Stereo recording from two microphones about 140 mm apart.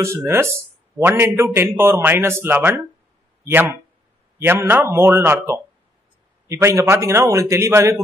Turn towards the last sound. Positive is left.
turn(degrees=-20)  # may be behind; listen again after turning